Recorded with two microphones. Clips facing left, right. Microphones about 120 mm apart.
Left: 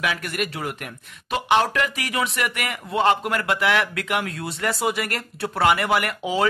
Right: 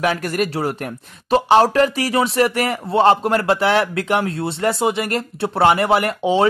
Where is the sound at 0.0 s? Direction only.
40° right (ahead or behind).